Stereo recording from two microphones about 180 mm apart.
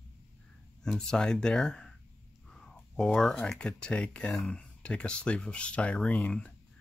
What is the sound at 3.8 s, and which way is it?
Speech, 5° left (ahead or behind).